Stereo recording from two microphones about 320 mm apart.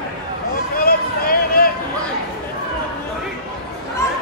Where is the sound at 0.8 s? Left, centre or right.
Left.